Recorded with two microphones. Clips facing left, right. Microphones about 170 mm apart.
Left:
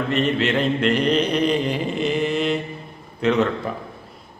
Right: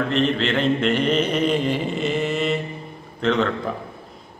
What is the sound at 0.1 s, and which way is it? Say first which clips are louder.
A man's voice: left 3 dB; centre (ahead or behind).